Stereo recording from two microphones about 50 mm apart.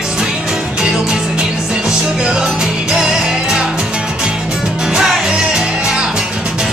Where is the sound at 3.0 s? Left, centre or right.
Centre.